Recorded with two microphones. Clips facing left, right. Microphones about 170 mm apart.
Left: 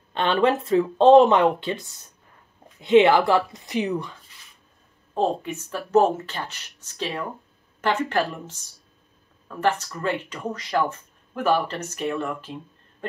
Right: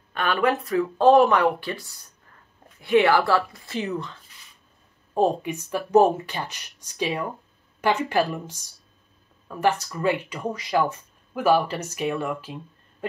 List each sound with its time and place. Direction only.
0.1 s speech: 25° left (ahead or behind)
5.1 s speech: 10° right (ahead or behind)
9.6 s speech: 10° right (ahead or behind)